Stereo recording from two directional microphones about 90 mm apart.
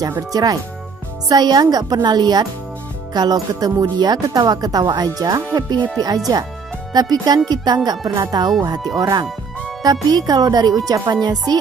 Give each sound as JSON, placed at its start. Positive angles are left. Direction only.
{"t": 0.3, "sound": "speech", "side_deg": -45}
{"t": 8.1, "sound": "speech", "side_deg": -35}
{"t": 8.6, "sound": "speech", "side_deg": -50}